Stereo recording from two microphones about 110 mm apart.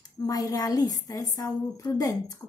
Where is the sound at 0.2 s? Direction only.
35° left (ahead or behind).